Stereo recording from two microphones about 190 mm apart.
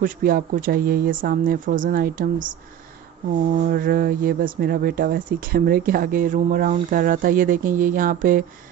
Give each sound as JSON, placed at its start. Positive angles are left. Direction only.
{"t": 0.0, "sound": "speech", "side_deg": -45}
{"t": 3.7, "sound": "speech", "side_deg": -50}